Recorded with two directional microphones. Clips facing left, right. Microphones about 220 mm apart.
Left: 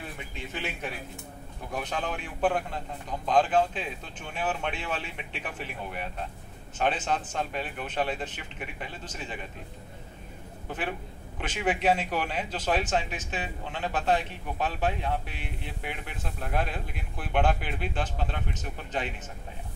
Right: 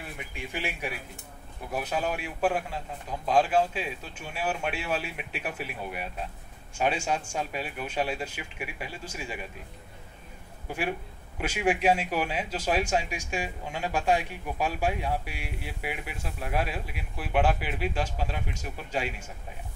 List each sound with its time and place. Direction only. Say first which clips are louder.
0.3 s a man's voice: right 2 dB; 10° right (ahead or behind)
10.7 s a man's voice: right 2 dB; 10° right (ahead or behind)